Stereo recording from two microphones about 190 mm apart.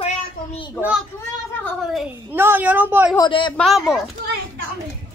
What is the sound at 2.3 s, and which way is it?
Speech, 10° right (ahead or behind).